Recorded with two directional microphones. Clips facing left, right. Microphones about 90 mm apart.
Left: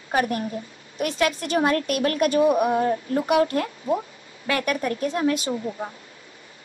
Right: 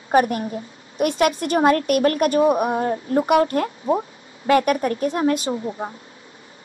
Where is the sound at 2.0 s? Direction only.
45° right (ahead or behind).